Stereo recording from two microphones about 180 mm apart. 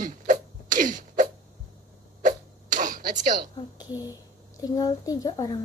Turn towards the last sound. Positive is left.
turn(degrees=20)  # may be behind; listen again after turning